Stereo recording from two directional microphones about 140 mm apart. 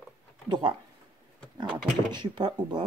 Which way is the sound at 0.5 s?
35° right (ahead or behind).